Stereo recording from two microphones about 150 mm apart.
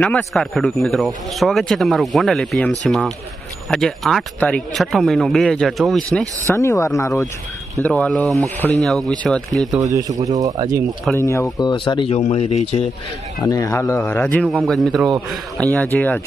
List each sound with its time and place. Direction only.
0.0 s speech: 5° left (ahead or behind)
6.5 s speech: 20° left (ahead or behind)
7.8 s speech: 10° left (ahead or behind)
9.8 s speech: 25° right (ahead or behind)
11.1 s speech: 20° left (ahead or behind); by 12.2 s 35° left (ahead or behind)
12.2 s speech: 45° left (ahead or behind)
13.5 s speech: 20° left (ahead or behind)